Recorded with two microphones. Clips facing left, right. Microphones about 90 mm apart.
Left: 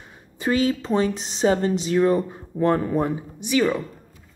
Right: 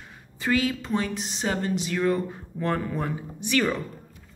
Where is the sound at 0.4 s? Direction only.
25° left (ahead or behind).